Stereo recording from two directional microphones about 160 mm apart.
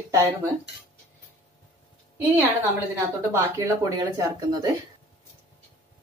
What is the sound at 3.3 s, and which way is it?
Speech, 20° right (ahead or behind).